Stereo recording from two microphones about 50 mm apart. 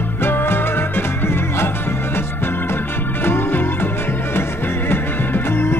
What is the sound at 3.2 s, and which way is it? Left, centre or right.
Music, left.